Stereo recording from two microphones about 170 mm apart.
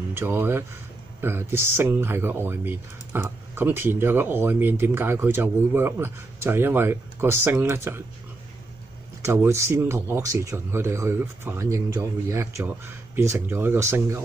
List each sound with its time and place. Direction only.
0.1 s speech: 15° right (ahead or behind)
9.2 s speech: 15° right (ahead or behind)